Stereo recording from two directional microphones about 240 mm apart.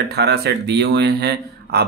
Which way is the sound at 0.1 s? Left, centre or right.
Right.